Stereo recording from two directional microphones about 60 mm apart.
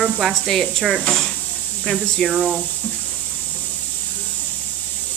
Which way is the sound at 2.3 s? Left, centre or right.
Right.